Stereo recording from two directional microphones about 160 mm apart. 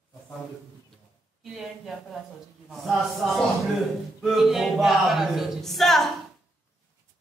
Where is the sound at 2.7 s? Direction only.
Centre (ahead or behind).